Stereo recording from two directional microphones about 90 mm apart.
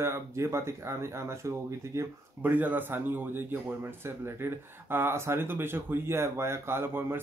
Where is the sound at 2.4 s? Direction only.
20° right (ahead or behind).